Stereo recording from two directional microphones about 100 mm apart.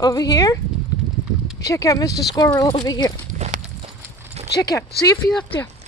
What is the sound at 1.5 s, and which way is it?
Speech, 35° left (ahead or behind).